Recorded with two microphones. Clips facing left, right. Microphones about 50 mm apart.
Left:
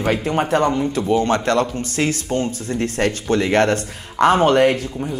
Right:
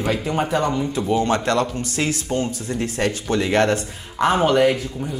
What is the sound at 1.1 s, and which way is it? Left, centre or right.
Speech, left.